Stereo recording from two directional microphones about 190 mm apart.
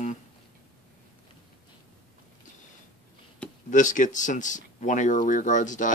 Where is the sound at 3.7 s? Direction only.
40° left (ahead or behind).